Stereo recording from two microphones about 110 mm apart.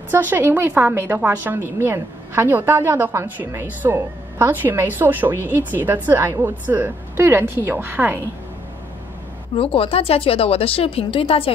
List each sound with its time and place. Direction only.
0.1 s a woman's voice: 20° right (ahead or behind)
9.6 s speech: 60° left (ahead or behind)